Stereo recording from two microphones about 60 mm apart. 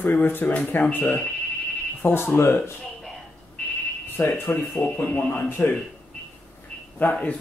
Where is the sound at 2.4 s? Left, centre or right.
Left.